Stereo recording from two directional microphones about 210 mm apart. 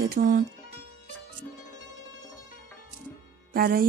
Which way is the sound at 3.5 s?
45° right (ahead or behind).